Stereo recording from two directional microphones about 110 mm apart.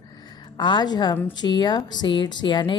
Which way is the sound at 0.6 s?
45° left (ahead or behind).